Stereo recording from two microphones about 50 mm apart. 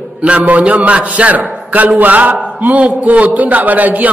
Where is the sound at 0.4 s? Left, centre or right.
Right.